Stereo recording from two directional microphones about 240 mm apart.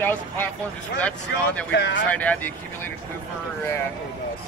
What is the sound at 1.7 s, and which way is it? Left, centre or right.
Speech, left.